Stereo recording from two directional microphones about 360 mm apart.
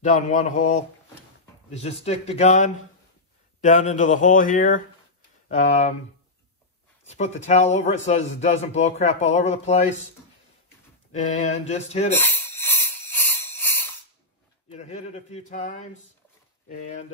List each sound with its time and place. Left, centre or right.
0.0 s a man's voice: left
7.1 s a man's voice: centre
11.1 s a man's voice: centre
12.1 s a sound: centre
14.7 s speech: centre